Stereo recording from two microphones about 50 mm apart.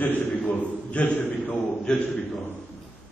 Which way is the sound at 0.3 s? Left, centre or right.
Left.